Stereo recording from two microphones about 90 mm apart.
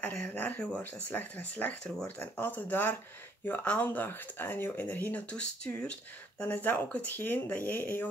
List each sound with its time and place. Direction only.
0.0 s speech: 20° left (ahead or behind)